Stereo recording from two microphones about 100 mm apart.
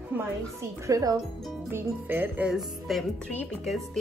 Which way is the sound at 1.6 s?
20° right (ahead or behind).